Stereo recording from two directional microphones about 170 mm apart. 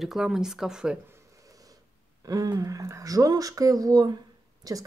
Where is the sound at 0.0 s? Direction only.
Centre (ahead or behind).